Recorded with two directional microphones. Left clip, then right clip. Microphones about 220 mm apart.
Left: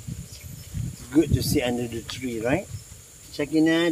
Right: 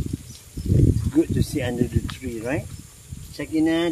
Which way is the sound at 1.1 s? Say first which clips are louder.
Left 2 dB; 35° left (ahead or behind).